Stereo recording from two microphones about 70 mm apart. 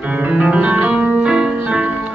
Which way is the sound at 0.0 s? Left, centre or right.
Centre.